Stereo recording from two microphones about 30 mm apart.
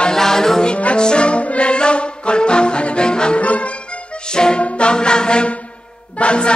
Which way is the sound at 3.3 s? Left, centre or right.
Left.